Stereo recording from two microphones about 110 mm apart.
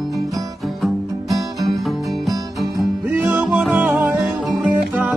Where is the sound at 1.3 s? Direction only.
35° right (ahead or behind).